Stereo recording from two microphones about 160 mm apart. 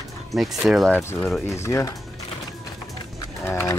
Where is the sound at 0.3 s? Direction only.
Centre (ahead or behind).